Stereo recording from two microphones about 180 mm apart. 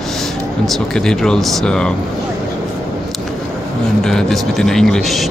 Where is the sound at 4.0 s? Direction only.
5° left (ahead or behind).